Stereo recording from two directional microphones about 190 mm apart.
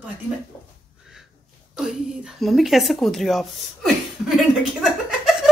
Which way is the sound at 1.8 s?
Centre (ahead or behind).